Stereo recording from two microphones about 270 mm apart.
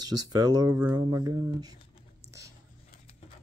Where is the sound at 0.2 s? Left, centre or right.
Centre.